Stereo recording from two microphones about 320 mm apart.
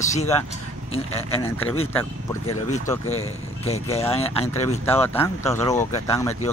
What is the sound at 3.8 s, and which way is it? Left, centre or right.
Speech, centre.